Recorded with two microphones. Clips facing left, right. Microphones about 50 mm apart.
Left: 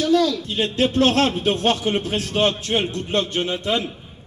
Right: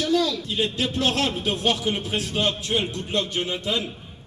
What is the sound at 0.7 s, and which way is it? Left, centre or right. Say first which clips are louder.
A man's voice: left 10 dB; left.